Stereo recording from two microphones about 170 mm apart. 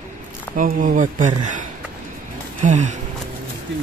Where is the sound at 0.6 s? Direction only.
50° right (ahead or behind).